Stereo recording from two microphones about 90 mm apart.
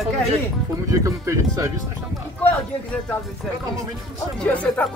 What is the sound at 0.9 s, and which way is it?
Speech, 35° right (ahead or behind).